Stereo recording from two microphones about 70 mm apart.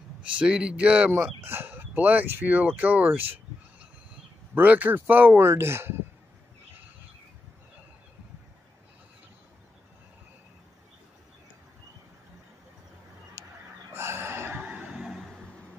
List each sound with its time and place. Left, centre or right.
0.2 s speech: centre
1.1 s speech: right
4.6 s speech: right
13.9 s a sound: right
14.6 s vehicle: centre